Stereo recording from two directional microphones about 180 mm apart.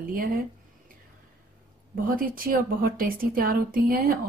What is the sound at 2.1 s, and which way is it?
A woman's voice, 55° right (ahead or behind).